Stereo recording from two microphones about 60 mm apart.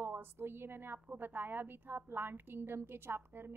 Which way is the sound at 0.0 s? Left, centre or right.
Right.